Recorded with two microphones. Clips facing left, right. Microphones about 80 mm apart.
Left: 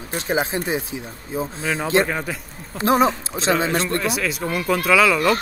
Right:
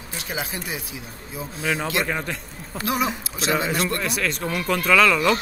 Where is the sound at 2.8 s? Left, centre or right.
Left.